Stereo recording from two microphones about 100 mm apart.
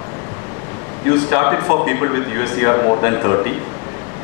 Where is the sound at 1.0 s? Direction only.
25° left (ahead or behind).